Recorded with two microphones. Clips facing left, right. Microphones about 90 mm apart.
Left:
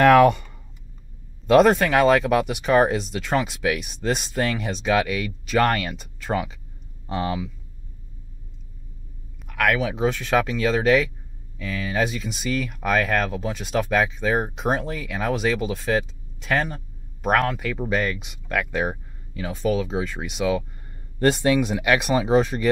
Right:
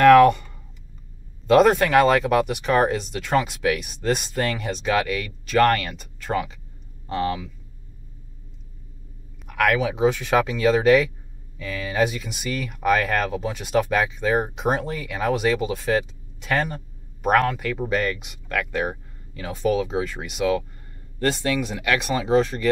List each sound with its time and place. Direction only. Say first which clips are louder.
0.0 s speech: right 2 dB; 15° left (ahead or behind)
1.5 s speech: even; centre (ahead or behind)
9.5 s speech: right 1 dB; 10° right (ahead or behind)
21.2 s speech: left 4 dB; 25° left (ahead or behind)